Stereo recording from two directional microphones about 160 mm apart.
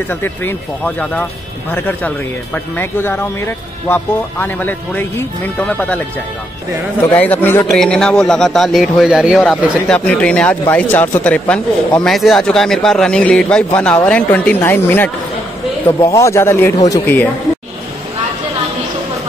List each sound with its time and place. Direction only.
0.1 s speech: 15° left (ahead or behind)
7.2 s a man's voice: 10° left (ahead or behind); by 9.4 s 5° right (ahead or behind)
9.8 s a man's voice: 5° left (ahead or behind)